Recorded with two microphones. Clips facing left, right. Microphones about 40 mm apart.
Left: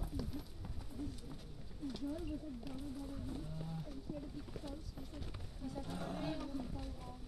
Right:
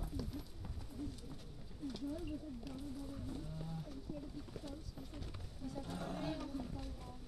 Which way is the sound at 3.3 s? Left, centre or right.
Centre.